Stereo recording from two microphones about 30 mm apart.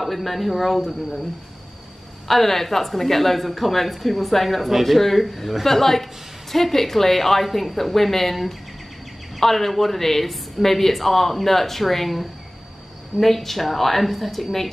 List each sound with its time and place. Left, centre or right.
0.0 s a woman's voice: centre
2.2 s a woman's voice: centre